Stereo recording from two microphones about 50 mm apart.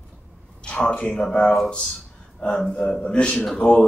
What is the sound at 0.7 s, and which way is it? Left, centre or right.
Speech, centre.